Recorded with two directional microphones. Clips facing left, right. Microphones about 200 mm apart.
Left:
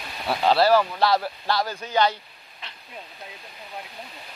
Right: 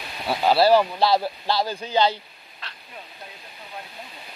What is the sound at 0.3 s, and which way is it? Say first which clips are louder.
Speech: right 1 dB; 5° right (ahead or behind).